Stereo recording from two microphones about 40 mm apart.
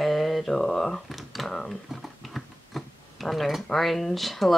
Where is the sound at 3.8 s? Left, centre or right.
Centre.